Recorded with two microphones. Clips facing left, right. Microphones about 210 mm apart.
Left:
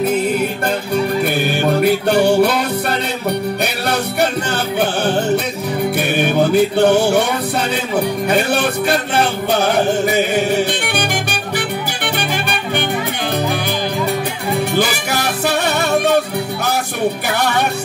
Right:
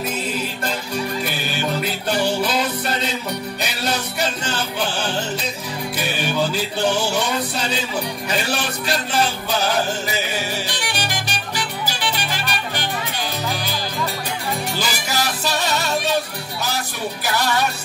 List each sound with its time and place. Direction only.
0.0 s music: 55° left (ahead or behind)
14.8 s music: 60° left (ahead or behind)
17.3 s music: 60° left (ahead or behind)